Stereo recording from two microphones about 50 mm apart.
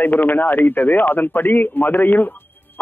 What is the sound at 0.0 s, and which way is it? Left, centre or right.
A man's voice, left.